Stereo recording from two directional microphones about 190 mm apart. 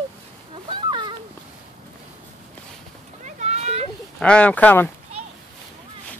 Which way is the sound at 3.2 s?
35° right (ahead or behind).